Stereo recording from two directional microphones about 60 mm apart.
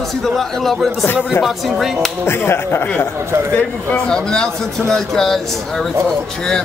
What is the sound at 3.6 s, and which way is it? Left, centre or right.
Speech, left.